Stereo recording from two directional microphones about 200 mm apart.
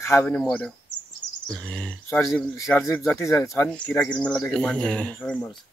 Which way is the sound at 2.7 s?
10° left (ahead or behind).